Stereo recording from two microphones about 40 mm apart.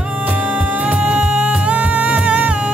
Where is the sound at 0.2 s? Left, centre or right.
Right.